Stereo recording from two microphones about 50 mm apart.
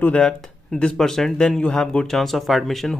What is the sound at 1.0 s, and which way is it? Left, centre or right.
Speech, centre.